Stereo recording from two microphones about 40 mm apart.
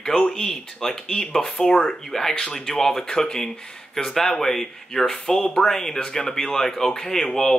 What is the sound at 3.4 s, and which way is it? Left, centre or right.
Speech, centre.